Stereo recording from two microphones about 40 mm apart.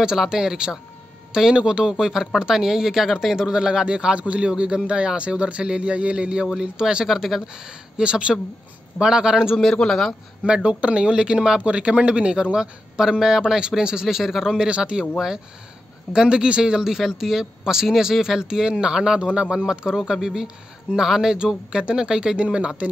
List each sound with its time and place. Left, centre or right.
0.3 s speech: centre
6.4 s speech: centre
7.1 s speech: centre
7.6 s speech: right
9.6 s speech: centre
10.4 s speech: right
14.0 s speech: centre
14.6 s speech: right
16.1 s speech: centre
19.4 s speech: centre
19.7 s speech: right
20.0 s speech: centre
21.8 s speech: centre